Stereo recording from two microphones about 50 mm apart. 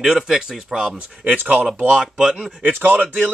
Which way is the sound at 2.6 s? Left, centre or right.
Right.